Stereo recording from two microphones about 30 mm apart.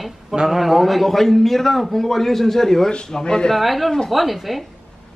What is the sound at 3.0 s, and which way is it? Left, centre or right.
Speech, left.